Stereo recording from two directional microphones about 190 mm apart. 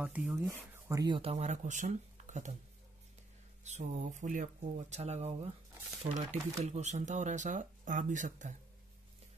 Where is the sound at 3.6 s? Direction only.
40° right (ahead or behind).